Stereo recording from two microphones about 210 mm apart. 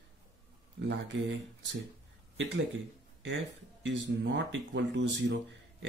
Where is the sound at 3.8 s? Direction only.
60° right (ahead or behind).